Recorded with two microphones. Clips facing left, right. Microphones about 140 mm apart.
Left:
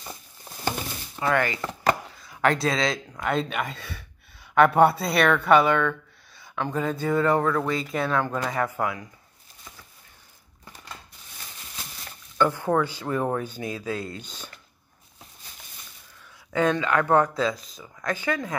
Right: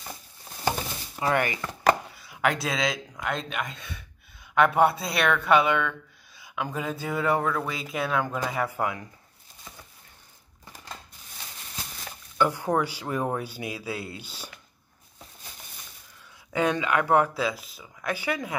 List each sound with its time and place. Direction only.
1.3 s chopping: 20° right (ahead or behind)
2.0 s speech: 10° right (ahead or behind)
12.4 s speech: 15° right (ahead or behind)
16.5 s speech: 15° right (ahead or behind)